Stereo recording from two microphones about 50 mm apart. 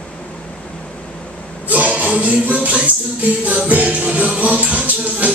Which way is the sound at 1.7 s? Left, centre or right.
Right.